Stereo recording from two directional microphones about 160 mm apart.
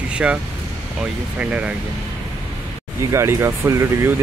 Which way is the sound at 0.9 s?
5° right (ahead or behind).